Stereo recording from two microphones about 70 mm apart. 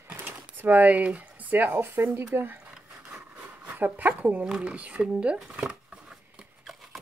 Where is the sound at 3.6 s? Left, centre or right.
Right.